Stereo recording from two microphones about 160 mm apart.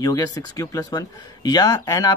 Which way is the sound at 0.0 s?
20° left (ahead or behind).